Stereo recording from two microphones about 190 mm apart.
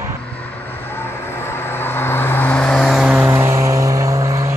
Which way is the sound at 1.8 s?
10° left (ahead or behind).